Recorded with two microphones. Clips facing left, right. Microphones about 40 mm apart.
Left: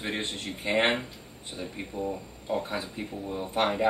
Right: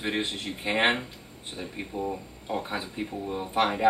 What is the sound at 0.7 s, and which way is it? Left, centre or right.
Speech, right.